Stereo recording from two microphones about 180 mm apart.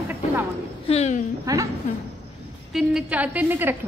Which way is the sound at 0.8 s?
35° left (ahead or behind).